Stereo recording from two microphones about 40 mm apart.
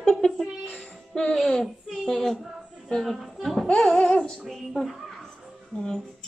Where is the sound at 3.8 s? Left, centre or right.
Centre.